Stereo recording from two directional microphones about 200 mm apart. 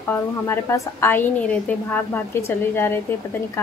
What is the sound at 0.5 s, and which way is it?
A woman's voice, 10° left (ahead or behind).